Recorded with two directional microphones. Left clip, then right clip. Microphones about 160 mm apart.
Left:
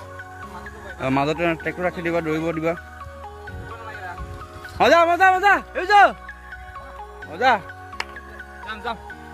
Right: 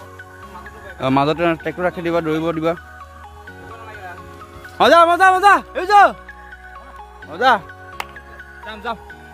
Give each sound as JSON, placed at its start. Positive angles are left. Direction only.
{"t": 0.9, "sound": "speech", "side_deg": -20}
{"t": 4.7, "sound": "speech", "side_deg": -15}
{"t": 7.2, "sound": "speech", "side_deg": -15}